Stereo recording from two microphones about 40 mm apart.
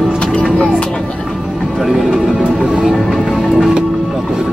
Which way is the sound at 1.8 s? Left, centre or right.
Centre.